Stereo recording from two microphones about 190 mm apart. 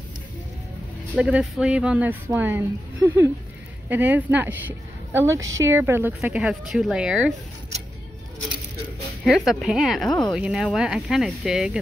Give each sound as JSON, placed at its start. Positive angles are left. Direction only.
{"t": 1.1, "sound": "speech", "side_deg": -5}
{"t": 9.2, "sound": "speech", "side_deg": 0}